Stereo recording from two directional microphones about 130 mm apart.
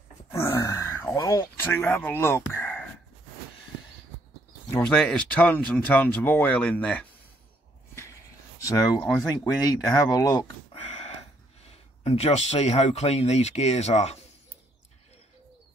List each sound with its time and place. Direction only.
0.3 s grunt: 25° left (ahead or behind)
1.1 s speech: 25° left (ahead or behind)
4.8 s speech: 5° left (ahead or behind)
8.5 s speech: 25° left (ahead or behind)
10.7 s a sound: 50° left (ahead or behind)
11.7 s speech: 55° left (ahead or behind)